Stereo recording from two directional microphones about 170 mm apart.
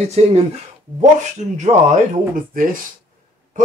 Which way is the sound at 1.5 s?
45° right (ahead or behind).